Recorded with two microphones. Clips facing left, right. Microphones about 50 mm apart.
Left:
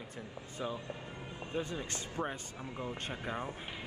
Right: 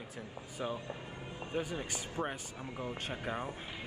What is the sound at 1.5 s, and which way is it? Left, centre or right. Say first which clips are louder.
Speech: right 1 dB; right.